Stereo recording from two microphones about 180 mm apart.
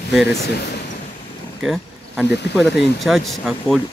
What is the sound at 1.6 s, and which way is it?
Speech, 5° right (ahead or behind).